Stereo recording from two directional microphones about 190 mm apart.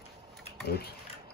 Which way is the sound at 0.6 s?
55° left (ahead or behind).